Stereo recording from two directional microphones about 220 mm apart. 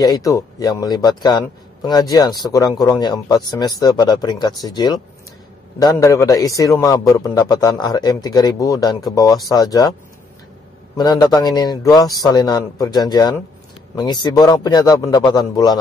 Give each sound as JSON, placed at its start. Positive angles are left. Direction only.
{"t": 0.0, "sound": "a man's voice", "side_deg": 15}
{"t": 11.2, "sound": "a man's voice", "side_deg": 20}